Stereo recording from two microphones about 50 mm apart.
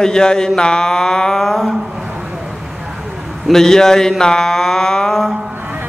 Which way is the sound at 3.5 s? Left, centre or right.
Centre.